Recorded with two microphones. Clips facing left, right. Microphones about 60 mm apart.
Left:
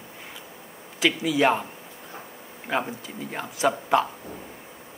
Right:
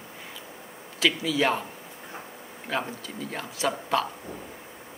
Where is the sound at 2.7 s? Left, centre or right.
Left.